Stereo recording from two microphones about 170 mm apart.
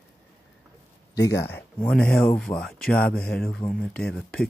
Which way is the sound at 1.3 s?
80° left.